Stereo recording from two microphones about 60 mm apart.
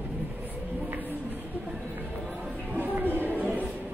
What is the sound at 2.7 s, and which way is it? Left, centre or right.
Music, right.